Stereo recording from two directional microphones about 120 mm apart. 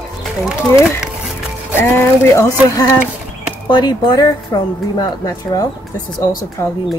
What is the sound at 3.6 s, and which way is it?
Speech, 35° left (ahead or behind).